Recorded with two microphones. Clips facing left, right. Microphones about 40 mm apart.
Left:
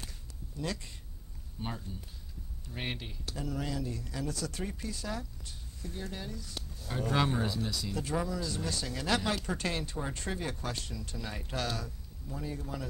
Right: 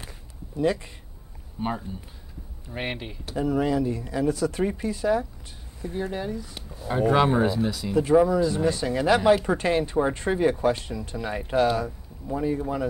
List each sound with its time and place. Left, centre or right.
1.6 s speech: right